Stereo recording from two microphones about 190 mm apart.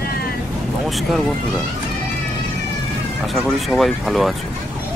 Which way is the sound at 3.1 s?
Centre (ahead or behind).